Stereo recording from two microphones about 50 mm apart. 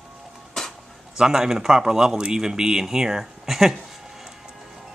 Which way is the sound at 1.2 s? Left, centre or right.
Centre.